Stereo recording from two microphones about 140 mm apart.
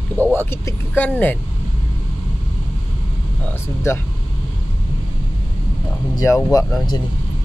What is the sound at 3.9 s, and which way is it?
Speech, 20° left (ahead or behind).